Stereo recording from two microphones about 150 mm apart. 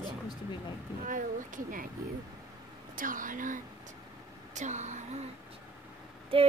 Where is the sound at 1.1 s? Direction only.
60° right (ahead or behind).